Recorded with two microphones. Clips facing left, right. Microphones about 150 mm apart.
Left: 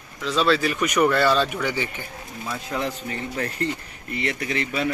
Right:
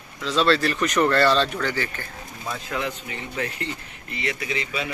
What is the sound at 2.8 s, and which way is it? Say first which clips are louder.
Speech: left 2 dB; 40° left (ahead or behind).